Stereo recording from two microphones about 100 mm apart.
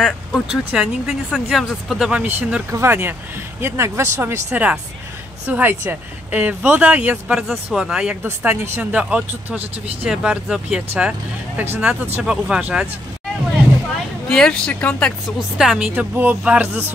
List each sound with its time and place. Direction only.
0.0 s speech: centre (ahead or behind)
2.7 s speech: 25° right (ahead or behind)
4.5 s speech: 15° right (ahead or behind)
8.2 s speech: 20° right (ahead or behind)
12.2 s speech: 10° right (ahead or behind)
14.3 s speech: 5° left (ahead or behind)
15.3 s speech: 5° right (ahead or behind)
15.9 s speech: 20° right (ahead or behind)